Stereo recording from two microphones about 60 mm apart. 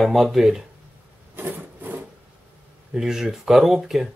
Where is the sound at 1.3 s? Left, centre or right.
Right.